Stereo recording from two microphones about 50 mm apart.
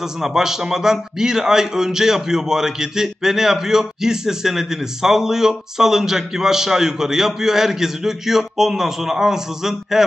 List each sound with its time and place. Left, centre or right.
0.2 s a man's voice: centre